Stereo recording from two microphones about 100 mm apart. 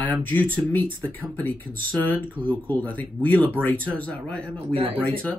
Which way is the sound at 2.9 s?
15° left (ahead or behind).